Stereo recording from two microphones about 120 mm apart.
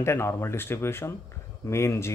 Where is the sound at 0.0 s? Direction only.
20° left (ahead or behind).